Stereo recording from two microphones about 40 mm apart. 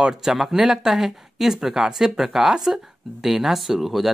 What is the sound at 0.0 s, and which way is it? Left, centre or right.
Speech, centre.